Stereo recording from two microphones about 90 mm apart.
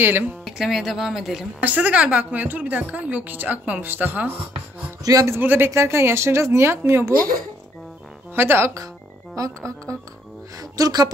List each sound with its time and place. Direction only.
0.0 s speech: 20° right (ahead or behind)
0.5 s speech: 5° right (ahead or behind)
1.6 s a woman's voice: 15° right (ahead or behind)
5.0 s a man's voice: 40° right (ahead or behind)
5.3 s speech: 25° right (ahead or behind)
8.4 s speech: 25° right (ahead or behind)
8.7 s music: 40° right (ahead or behind)
10.6 s a woman's voice: 45° right (ahead or behind)